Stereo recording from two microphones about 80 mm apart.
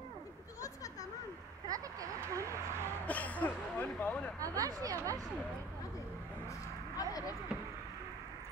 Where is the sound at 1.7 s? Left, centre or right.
Right.